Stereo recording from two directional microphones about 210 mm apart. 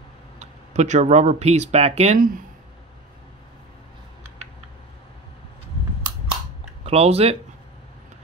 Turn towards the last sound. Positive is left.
turn(degrees=-30)  # may be behind; listen again after turning